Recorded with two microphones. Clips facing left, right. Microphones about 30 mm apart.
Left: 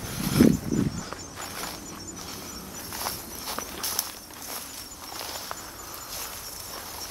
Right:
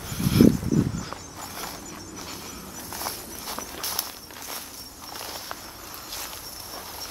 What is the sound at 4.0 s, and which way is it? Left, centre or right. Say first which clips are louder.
Walk: right 1 dB; right.